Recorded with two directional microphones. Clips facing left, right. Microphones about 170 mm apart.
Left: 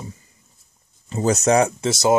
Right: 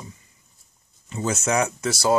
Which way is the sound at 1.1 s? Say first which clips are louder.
Left 7 dB; 35° left (ahead or behind).